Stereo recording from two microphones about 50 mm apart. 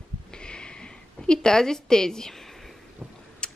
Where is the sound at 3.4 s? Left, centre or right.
Centre.